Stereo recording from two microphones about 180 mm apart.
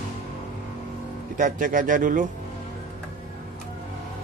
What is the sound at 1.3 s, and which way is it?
Speech, 50° right (ahead or behind).